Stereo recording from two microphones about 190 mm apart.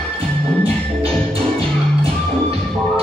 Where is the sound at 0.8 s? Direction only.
5° left (ahead or behind).